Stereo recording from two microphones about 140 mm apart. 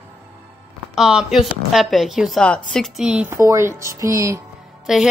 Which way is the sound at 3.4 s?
20° right (ahead or behind).